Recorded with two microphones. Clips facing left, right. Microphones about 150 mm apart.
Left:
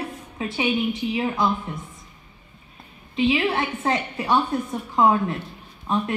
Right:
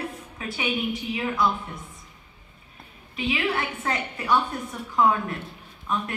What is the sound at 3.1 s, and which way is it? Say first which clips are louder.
A woman's voice: left 5 dB; 25° left (ahead or behind).